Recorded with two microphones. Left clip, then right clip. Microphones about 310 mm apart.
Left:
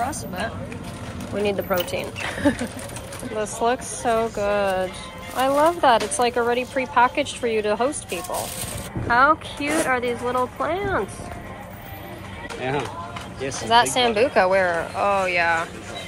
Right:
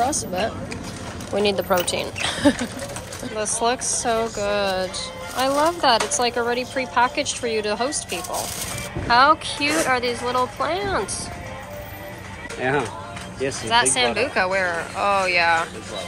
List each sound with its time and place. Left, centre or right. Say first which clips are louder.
1.3 s a woman's voice: right 3 dB; centre
13.4 s speech: right 3 dB; right
13.7 s speech: left 2 dB; centre